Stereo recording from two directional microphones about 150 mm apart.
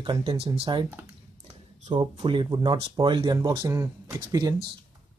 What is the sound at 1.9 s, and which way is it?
Speech, 30° right (ahead or behind).